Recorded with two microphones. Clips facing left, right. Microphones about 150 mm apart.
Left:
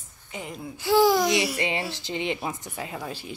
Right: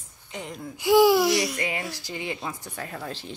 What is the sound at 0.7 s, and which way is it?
Speech, 15° right (ahead or behind).